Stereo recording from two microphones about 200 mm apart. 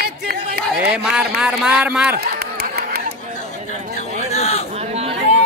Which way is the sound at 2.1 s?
50° right (ahead or behind).